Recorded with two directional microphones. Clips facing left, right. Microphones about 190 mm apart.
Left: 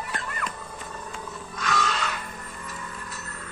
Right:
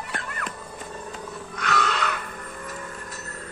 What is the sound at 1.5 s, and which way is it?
Wild animals, 60° right (ahead or behind).